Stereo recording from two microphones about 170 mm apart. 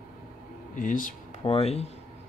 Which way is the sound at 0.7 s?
50° left (ahead or behind).